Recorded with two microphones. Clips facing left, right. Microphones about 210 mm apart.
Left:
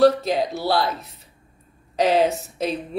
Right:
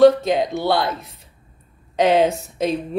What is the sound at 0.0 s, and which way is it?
Speech, 5° left (ahead or behind).